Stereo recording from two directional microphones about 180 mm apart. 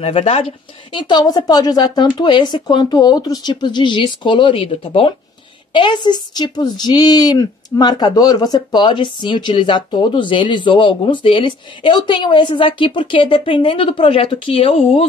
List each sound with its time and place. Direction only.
0.0 s a woman's voice: 35° left (ahead or behind)